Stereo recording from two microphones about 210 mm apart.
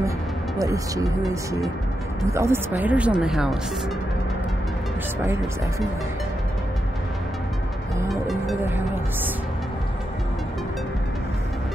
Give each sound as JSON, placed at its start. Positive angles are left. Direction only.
{"t": 0.6, "sound": "speech", "side_deg": -15}
{"t": 2.2, "sound": "speech", "side_deg": -15}
{"t": 8.1, "sound": "music", "side_deg": 0}
{"t": 8.6, "sound": "speech", "side_deg": -10}